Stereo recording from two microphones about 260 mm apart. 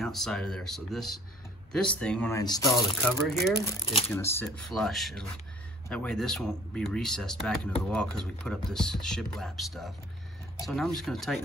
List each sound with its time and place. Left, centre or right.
0.0 s speech: centre; by 4.0 s left
4.1 s speech: centre